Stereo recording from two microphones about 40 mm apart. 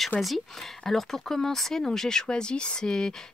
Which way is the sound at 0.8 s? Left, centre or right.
Centre.